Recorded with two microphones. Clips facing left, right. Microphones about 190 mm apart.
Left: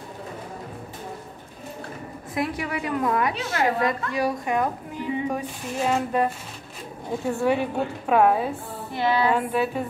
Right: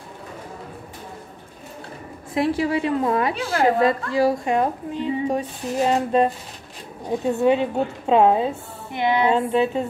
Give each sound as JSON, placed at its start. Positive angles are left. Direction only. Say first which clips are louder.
{"t": 2.3, "sound": "a woman's voice", "louder": "right 7 dB", "side_deg": -30}